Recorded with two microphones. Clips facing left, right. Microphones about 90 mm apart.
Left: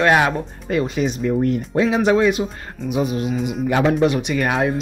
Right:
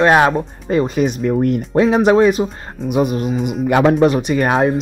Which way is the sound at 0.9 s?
50° right (ahead or behind).